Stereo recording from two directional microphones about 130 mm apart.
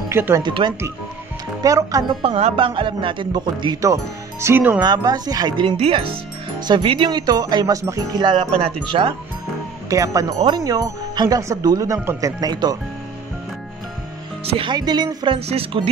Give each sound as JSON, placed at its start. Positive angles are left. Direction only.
{"t": 0.1, "sound": "speech", "side_deg": -20}
{"t": 0.4, "sound": "speech", "side_deg": -35}
{"t": 1.6, "sound": "speech", "side_deg": -25}
{"t": 2.2, "sound": "speech", "side_deg": -45}
{"t": 4.8, "sound": "speech", "side_deg": -30}
{"t": 5.8, "sound": "speech", "side_deg": -45}
{"t": 9.8, "sound": "speech", "side_deg": -25}
{"t": 14.4, "sound": "speech", "side_deg": -45}
{"t": 15.3, "sound": "speech", "side_deg": -50}